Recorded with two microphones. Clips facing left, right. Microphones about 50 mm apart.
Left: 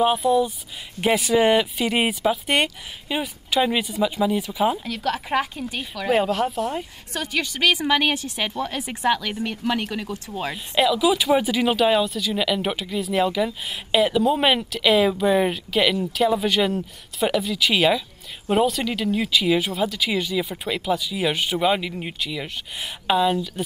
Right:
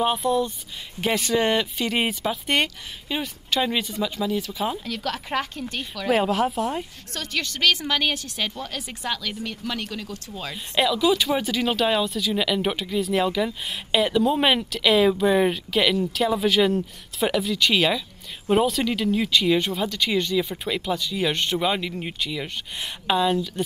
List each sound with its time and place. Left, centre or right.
0.0 s speech: centre
7.2 s speech: centre
10.5 s speech: centre